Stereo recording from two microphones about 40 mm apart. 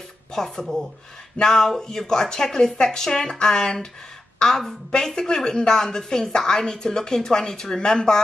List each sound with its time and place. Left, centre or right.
0.3 s speech: centre